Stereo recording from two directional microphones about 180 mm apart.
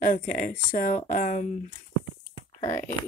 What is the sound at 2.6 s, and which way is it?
Speech, 15° left (ahead or behind).